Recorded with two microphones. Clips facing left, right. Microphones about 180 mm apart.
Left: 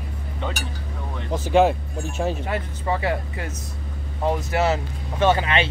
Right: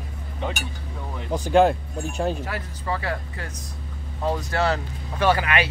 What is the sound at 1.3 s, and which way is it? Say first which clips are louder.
Speech: even; centre (ahead or behind).